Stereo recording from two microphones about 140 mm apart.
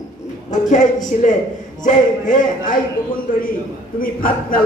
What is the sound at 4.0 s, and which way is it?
Speech, 90° left.